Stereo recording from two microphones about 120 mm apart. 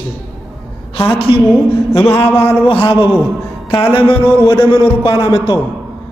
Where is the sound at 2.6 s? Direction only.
50° left (ahead or behind).